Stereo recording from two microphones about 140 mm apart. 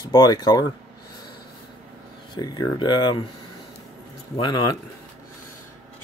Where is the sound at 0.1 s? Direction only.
30° left (ahead or behind).